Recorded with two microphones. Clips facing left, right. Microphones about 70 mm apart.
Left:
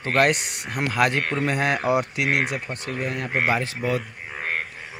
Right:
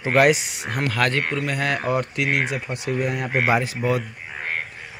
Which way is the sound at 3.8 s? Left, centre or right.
Centre.